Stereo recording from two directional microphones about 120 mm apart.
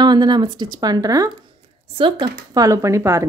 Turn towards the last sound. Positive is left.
turn(degrees=-25)  # may be behind; listen again after turning